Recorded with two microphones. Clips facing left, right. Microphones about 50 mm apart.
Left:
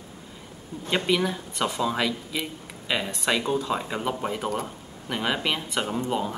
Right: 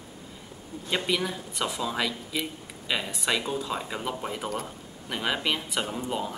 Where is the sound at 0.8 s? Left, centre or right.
Centre.